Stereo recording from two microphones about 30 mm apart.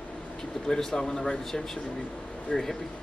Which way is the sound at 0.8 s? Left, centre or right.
Centre.